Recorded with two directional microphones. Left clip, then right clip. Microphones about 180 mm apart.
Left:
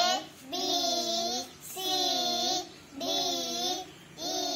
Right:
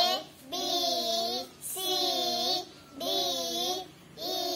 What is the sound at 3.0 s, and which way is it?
Child singing, 30° right (ahead or behind).